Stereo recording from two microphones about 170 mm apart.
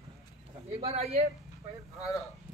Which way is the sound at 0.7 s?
35° right (ahead or behind).